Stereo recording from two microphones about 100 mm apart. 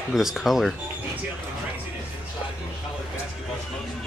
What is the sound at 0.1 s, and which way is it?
Speech, centre (ahead or behind).